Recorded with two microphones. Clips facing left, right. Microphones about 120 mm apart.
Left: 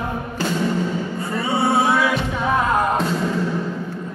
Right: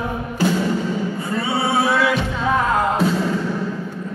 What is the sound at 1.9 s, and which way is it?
Music, 10° left (ahead or behind).